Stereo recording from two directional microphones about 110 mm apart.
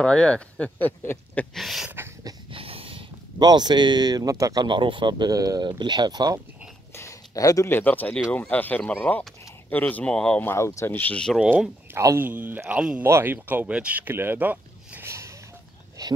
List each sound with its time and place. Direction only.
0.0 s speech: 10° left (ahead or behind)
1.5 s a sound: centre (ahead or behind)
2.5 s snort: 55° right (ahead or behind)
3.3 s speech: 40° right (ahead or behind)
4.6 s speech: 45° right (ahead or behind)
6.9 s a sound: 25° left (ahead or behind)
7.7 s speech: 15° left (ahead or behind)
10.4 s speech: 25° left (ahead or behind)
10.9 s speech: 15° left (ahead or behind)
11.9 s speech: 25° right (ahead or behind)
16.0 s a sound: 30° right (ahead or behind)